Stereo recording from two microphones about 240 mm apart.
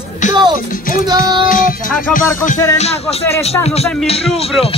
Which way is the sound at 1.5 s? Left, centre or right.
Left.